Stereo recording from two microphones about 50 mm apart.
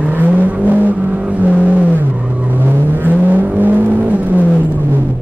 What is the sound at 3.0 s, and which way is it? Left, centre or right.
Vehicle, right.